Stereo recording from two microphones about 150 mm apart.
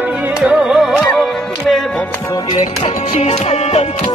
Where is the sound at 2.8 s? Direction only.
40° left (ahead or behind).